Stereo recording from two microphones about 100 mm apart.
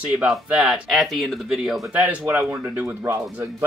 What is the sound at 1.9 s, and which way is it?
Speech, 15° right (ahead or behind).